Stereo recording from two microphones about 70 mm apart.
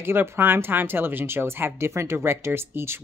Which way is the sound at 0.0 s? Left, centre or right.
Right.